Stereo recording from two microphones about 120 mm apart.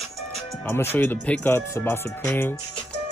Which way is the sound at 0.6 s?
20° left (ahead or behind).